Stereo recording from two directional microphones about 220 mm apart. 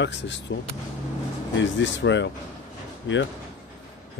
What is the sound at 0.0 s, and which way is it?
Speech, 55° left (ahead or behind).